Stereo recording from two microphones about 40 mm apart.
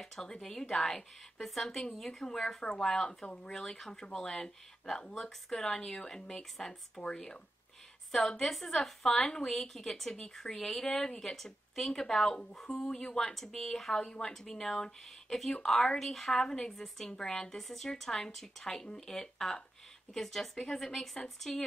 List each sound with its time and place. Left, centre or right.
0.2 s speech: centre
8.3 s speech: centre
10.9 s speech: left
11.1 s speech: centre
17.2 s speech: centre
17.6 s speech: centre